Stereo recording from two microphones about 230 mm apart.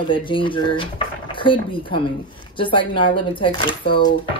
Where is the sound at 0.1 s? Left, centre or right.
Left.